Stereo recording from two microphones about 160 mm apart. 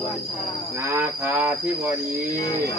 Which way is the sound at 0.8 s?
15° right (ahead or behind).